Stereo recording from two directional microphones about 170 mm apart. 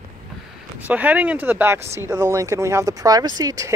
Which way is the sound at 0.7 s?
10° right (ahead or behind).